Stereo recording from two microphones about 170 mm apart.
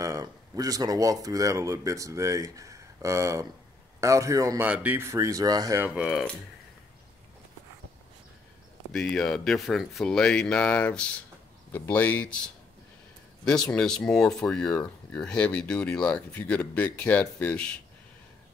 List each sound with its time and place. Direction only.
0.0 s a man's voice: 20° right (ahead or behind)
5.9 s speech: 5° right (ahead or behind)
8.9 s speech: 5° left (ahead or behind)
13.7 s speech: 5° left (ahead or behind)